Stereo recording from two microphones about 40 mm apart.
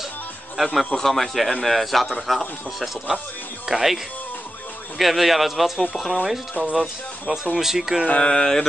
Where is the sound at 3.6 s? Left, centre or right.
Centre.